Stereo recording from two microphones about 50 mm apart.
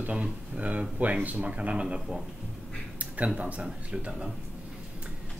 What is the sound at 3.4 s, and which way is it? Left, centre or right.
Speech, right.